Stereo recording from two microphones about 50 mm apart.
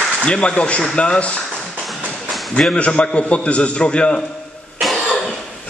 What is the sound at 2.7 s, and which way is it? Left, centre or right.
A man's voice, left.